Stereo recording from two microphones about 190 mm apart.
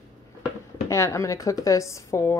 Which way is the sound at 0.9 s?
15° left (ahead or behind).